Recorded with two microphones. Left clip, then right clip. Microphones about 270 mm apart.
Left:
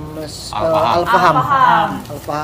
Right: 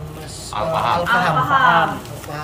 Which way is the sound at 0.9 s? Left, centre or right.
Centre.